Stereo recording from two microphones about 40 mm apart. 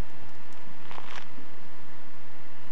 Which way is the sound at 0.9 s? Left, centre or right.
Centre.